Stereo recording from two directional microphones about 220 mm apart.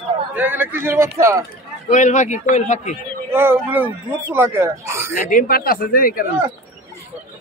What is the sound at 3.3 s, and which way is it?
Speech, 10° right (ahead or behind).